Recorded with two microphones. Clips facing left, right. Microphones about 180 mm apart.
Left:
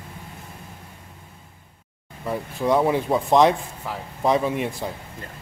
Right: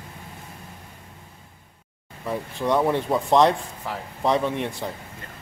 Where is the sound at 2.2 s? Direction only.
5° left (ahead or behind).